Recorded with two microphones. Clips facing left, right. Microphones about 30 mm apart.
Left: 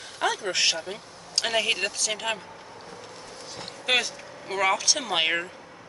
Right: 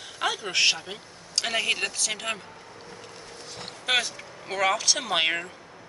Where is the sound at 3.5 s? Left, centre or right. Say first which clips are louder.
Left 1 dB; centre.